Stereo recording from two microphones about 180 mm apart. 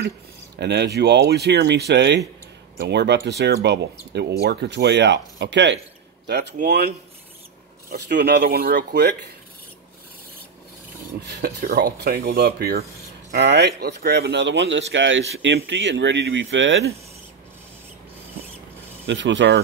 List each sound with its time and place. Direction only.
0.6 s speech: 70° right (ahead or behind)
7.9 s speech: 65° right (ahead or behind)
11.2 s speech: 60° right (ahead or behind); by 16.9 s 90° right
19.0 s speech: 85° right